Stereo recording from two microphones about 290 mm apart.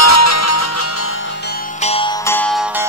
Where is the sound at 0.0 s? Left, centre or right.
Left.